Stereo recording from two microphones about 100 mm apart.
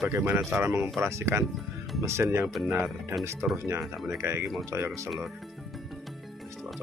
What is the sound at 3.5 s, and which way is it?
Speech, 25° right (ahead or behind).